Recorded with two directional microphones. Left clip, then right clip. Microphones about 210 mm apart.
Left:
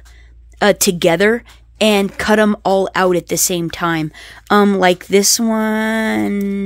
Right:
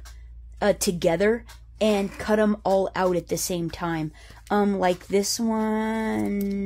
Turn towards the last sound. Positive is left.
turn(degrees=35)  # may be behind; listen again after turning